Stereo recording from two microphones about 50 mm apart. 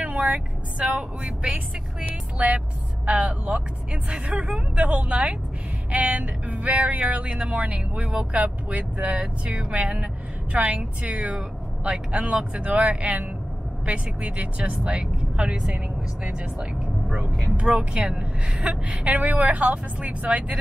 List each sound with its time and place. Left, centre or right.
0.0 s a woman's voice: right